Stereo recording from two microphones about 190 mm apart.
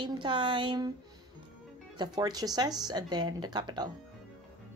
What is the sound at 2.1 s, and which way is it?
A woman's voice, 20° right (ahead or behind).